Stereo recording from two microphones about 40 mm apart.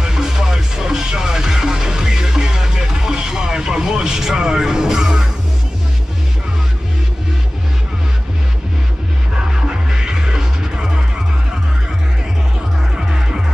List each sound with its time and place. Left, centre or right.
0.0 s music: centre
9.4 s music: centre
12.9 s music: centre